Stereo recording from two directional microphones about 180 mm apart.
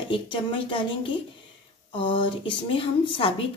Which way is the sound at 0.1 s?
25° left (ahead or behind).